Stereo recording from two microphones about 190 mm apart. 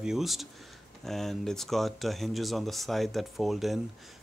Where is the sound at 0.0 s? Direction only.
Centre (ahead or behind).